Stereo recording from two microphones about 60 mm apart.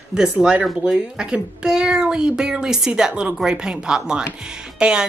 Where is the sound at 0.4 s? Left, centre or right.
Centre.